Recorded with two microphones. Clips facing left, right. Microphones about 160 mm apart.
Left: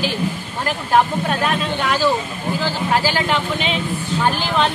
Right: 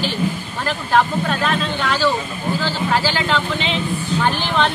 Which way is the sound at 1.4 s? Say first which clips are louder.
Even; 10° left (ahead or behind).